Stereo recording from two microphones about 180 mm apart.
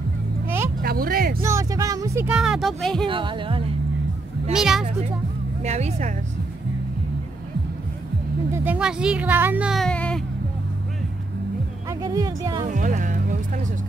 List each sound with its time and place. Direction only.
0.8 s speech: 55° right (ahead or behind)
1.4 s speech: 15° right (ahead or behind)
2.3 s speech: 5° right (ahead or behind)
3.1 s speech: 25° right (ahead or behind)
4.5 s speech: 5° right (ahead or behind)
5.6 s speech: 40° right (ahead or behind)
8.6 s speech: 5° right (ahead or behind)
11.9 s speech: 20° right (ahead or behind)
12.6 s speech: 45° right (ahead or behind)